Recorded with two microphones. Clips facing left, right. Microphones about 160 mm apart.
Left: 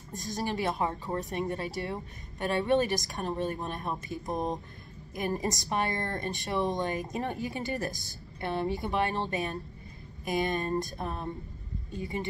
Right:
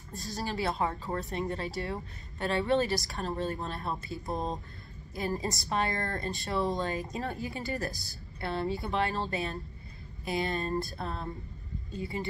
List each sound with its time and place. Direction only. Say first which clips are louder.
0.1 s a woman's voice: left 3 dB; 15° left (ahead or behind)